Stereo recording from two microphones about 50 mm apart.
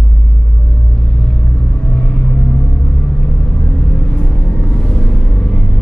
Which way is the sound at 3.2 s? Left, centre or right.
Centre.